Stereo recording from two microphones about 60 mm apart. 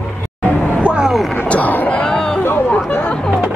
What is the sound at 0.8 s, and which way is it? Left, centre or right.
Vehicle, centre.